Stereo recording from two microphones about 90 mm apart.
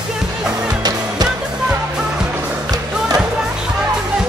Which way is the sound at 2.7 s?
45° right (ahead or behind).